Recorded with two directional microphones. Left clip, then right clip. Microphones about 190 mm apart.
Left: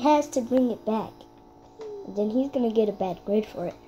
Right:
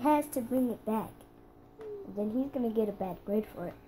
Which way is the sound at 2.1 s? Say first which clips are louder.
Left 8 dB; 25° left (ahead or behind).